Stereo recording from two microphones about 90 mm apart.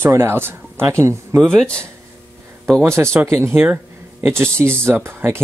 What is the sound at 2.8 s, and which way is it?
Speech, 30° right (ahead or behind).